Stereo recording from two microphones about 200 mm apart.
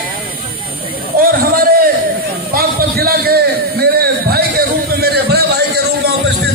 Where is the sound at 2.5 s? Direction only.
50° right (ahead or behind).